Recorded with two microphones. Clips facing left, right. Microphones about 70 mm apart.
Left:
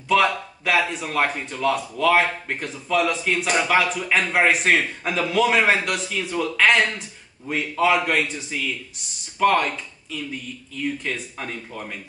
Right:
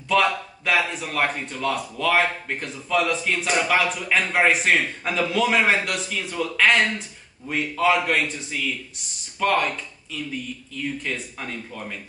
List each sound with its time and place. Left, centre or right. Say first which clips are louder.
0.1 s speech: left 1 dB; centre
10.8 s speech: left 2 dB; centre